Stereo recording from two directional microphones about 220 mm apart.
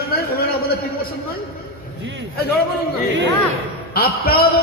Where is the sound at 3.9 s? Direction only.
45° left (ahead or behind).